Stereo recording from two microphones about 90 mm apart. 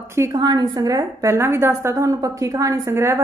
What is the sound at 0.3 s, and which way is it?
A woman's voice, 50° right (ahead or behind).